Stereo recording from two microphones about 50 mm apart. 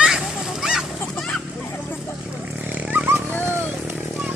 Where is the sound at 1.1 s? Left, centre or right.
Centre.